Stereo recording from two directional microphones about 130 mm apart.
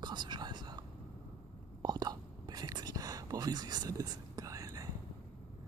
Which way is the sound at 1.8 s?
30° right (ahead or behind).